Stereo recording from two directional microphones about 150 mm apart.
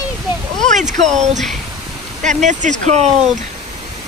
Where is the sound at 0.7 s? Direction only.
55° right (ahead or behind).